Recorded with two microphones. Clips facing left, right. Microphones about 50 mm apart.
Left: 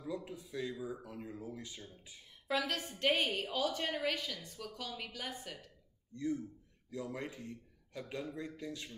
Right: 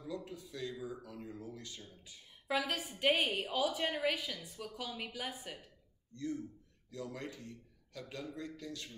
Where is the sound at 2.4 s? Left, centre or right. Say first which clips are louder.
Even; centre.